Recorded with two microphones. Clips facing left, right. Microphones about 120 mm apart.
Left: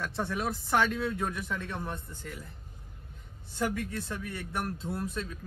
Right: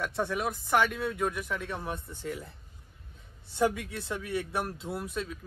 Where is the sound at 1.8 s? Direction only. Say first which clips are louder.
Right 1 dB; 20° right (ahead or behind).